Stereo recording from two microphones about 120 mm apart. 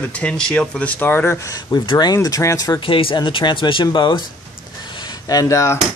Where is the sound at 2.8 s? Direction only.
45° left (ahead or behind).